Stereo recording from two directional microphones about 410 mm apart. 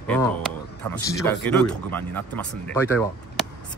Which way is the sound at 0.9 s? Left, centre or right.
Centre.